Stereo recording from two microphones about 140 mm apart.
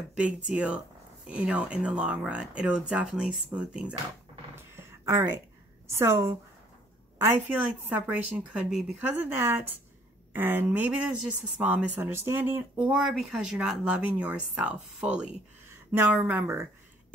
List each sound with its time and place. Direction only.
0.1 s speech: 5° right (ahead or behind)
4.6 s a sound: 20° right (ahead or behind)
5.9 s a woman's voice: 20° right (ahead or behind)